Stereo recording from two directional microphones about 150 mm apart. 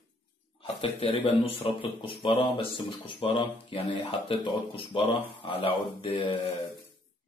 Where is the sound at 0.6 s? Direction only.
35° left (ahead or behind).